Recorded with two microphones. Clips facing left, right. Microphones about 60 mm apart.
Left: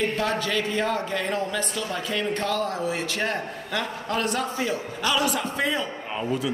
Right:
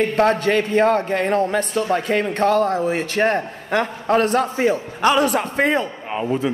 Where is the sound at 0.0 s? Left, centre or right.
Right.